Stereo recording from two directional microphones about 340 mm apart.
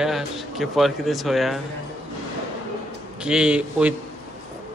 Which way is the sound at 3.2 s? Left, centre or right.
Centre.